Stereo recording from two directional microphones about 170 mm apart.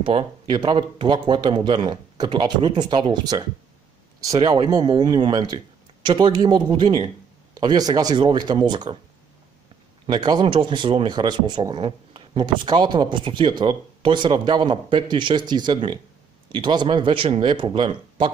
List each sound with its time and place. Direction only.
0.0 s speech: 30° right (ahead or behind)
10.0 s speech: 25° right (ahead or behind)